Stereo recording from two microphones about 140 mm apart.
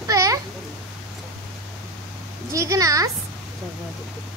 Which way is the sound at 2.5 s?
25° right (ahead or behind).